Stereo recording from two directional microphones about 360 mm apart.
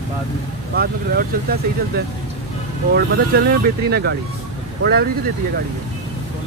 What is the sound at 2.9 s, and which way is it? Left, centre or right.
Speech, right.